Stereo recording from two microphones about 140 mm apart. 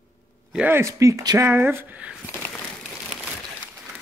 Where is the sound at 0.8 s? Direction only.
20° right (ahead or behind).